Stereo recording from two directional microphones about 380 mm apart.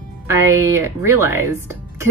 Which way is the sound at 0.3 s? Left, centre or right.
Centre.